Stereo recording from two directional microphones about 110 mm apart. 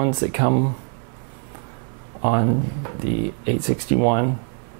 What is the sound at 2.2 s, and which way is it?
Speech, 15° right (ahead or behind).